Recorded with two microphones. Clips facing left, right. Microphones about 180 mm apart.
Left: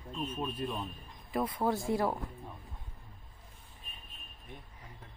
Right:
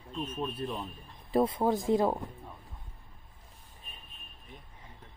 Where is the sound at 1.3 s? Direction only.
25° right (ahead or behind).